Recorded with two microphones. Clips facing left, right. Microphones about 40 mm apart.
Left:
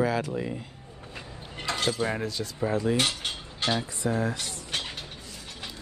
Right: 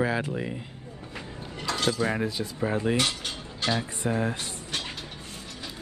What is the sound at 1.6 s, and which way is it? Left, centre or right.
Mechanisms, left.